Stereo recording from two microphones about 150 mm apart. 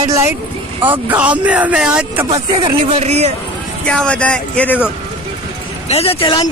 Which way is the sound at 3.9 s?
10° left (ahead or behind).